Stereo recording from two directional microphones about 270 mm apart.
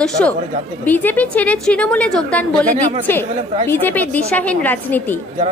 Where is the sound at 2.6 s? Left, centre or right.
Right.